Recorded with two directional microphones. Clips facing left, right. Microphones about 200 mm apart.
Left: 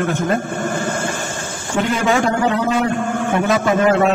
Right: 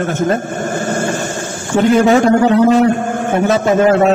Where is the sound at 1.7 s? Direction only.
40° right (ahead or behind).